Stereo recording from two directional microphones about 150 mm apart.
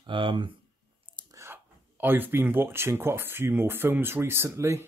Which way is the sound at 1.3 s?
15° right (ahead or behind).